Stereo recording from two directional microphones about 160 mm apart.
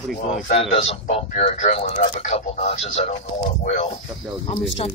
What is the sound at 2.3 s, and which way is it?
Speech, 40° left (ahead or behind).